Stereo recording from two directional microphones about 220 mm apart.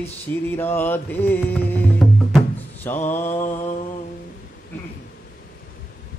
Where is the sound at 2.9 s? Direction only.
35° left (ahead or behind).